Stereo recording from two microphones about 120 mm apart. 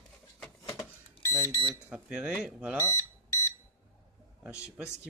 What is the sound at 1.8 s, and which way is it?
Speech, 10° right (ahead or behind).